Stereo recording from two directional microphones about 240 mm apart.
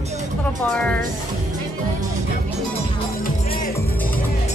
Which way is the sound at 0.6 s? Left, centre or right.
Centre.